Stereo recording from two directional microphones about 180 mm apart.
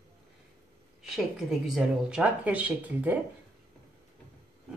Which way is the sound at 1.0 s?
5° right (ahead or behind).